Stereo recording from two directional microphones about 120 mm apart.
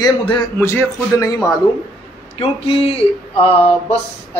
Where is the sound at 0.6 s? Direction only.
20° left (ahead or behind).